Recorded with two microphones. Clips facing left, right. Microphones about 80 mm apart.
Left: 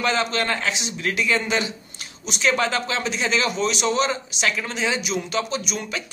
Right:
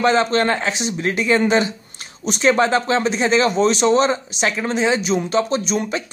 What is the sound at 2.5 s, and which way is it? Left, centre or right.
A man's voice, right.